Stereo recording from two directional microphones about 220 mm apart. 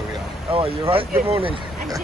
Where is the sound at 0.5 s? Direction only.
25° right (ahead or behind).